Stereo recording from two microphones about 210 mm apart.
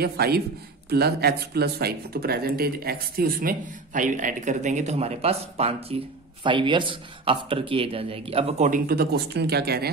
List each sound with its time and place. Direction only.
0.0 s a man's voice: 50° right (ahead or behind)